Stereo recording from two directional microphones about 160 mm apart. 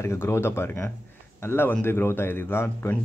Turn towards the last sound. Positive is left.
turn(degrees=15)  # may be behind; listen again after turning